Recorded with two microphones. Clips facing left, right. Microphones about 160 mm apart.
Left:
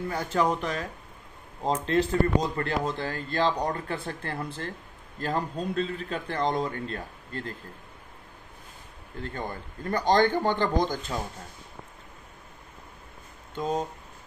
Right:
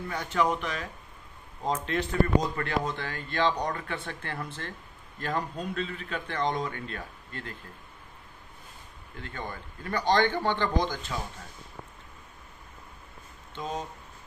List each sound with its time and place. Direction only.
0.1 s a man's voice: 35° left (ahead or behind)
9.1 s a man's voice: 35° left (ahead or behind)
13.6 s a man's voice: 40° left (ahead or behind)